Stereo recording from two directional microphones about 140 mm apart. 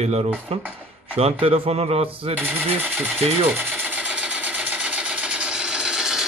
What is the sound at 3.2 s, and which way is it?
Speech, 45° right (ahead or behind).